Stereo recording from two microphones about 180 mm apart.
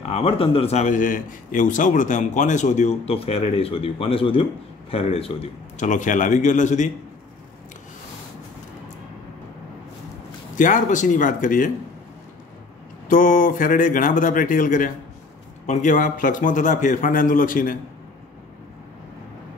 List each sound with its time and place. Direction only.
0.1 s a man's voice: 30° left (ahead or behind)
10.5 s a man's voice: 45° left (ahead or behind)
13.1 s a man's voice: 50° left (ahead or behind)